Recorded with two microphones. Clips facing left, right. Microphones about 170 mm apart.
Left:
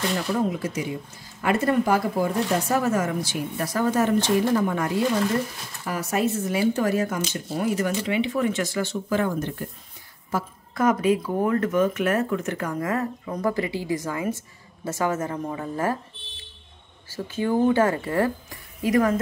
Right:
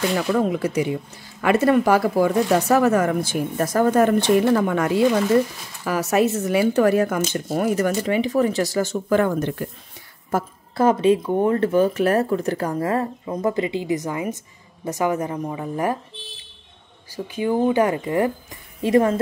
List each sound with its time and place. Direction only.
0.3 s speech: 75° right (ahead or behind)
1.4 s speech: 80° right; by 7.4 s 60° right (ahead or behind)
7.4 s speech: 45° right (ahead or behind); by 9.7 s 75° right (ahead or behind)
10.3 s speech: 50° right (ahead or behind)
10.7 s a woman's voice: 30° right (ahead or behind)
17.1 s a woman's voice: 15° right (ahead or behind)